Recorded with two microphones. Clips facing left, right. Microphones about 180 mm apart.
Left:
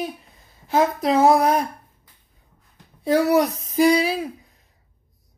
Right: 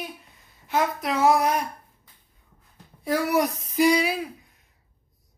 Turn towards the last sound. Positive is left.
turn(degrees=30)  # may be behind; listen again after turning